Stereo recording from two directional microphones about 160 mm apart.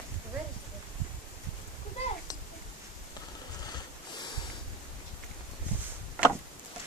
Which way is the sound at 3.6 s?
25° left (ahead or behind).